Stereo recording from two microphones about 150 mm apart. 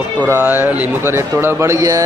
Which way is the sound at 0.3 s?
15° right (ahead or behind).